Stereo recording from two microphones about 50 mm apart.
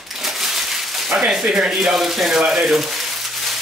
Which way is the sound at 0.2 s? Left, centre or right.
Centre.